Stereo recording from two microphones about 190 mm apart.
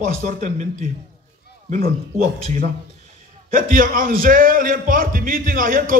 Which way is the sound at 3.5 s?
45° right (ahead or behind).